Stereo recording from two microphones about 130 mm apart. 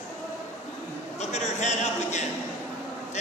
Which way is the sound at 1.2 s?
60° left (ahead or behind).